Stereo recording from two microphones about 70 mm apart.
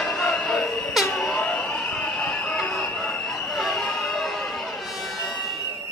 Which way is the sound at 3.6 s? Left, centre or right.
Centre.